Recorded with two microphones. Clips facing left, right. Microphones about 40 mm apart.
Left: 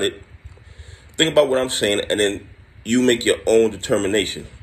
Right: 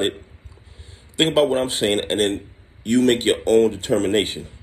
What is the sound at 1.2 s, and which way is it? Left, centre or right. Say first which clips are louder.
Speech: left 2 dB; left.